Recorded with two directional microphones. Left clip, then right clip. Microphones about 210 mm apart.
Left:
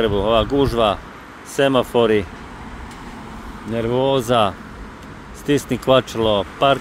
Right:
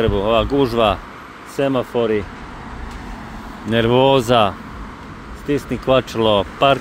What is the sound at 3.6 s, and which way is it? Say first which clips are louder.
Speech: right 5 dB; 15° right (ahead or behind).